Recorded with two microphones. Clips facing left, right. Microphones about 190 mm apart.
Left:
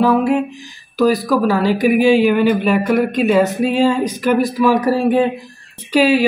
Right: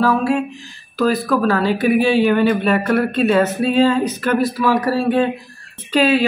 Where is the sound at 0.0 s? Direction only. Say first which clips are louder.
Left 3 dB; 20° left (ahead or behind).